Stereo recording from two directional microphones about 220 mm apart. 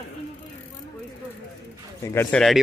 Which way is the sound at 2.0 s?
10° left (ahead or behind).